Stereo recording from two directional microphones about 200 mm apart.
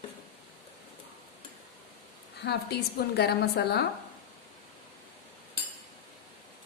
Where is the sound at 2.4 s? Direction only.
55° left (ahead or behind).